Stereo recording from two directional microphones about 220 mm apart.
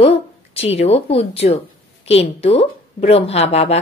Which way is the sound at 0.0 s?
25° left (ahead or behind).